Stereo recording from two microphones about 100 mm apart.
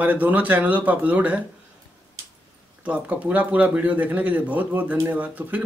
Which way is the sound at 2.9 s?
15° right (ahead or behind).